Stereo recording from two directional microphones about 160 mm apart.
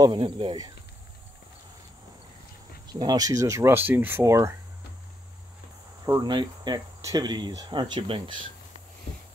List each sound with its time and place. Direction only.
0.0 s speech: 30° right (ahead or behind)
2.9 s speech: 25° right (ahead or behind)
6.0 s speech: 25° right (ahead or behind)